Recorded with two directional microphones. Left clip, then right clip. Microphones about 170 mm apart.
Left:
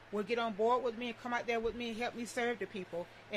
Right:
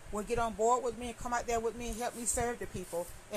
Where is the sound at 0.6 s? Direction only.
5° left (ahead or behind).